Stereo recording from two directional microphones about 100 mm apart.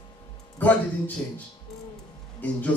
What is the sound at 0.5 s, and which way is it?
Speech, 15° left (ahead or behind).